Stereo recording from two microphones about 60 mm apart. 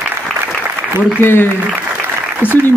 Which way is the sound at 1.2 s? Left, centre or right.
Left.